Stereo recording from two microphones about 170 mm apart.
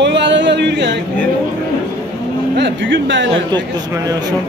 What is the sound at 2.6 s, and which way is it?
Speech, 90° right.